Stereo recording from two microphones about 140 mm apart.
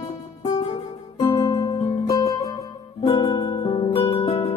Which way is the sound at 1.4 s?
25° left (ahead or behind).